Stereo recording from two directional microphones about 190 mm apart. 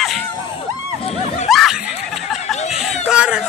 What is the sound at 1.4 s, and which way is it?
Snicker, centre (ahead or behind).